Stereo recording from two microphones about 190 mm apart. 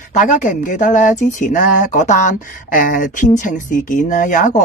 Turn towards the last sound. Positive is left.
turn(degrees=40)  # may be behind; listen again after turning